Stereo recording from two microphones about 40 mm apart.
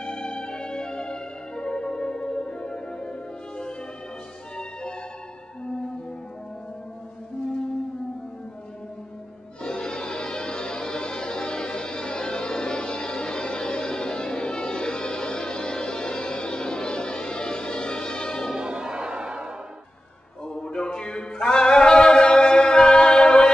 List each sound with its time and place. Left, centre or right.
0.0 s music: left
9.6 s music: left
18.6 s music: right
20.4 s a sound: left